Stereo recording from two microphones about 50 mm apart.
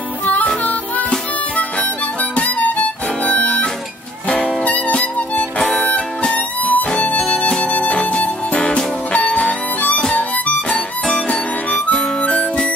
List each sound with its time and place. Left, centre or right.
2.3 s harmonica: left
4.3 s music: left
7.2 s music: centre; by 10.0 s left
11.2 s harmonica: left
12.2 s music: left